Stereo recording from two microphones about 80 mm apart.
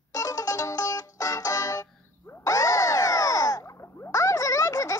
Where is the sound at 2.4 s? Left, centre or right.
Left.